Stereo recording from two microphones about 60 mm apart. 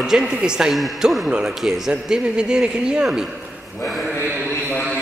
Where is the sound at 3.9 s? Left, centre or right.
Centre.